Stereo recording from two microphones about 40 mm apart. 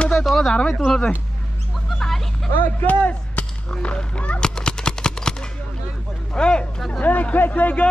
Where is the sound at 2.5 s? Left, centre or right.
Left.